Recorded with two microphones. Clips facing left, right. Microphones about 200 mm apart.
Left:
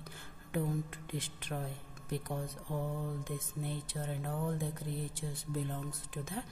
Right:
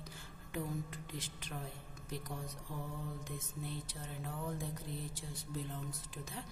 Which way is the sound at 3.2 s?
55° left (ahead or behind).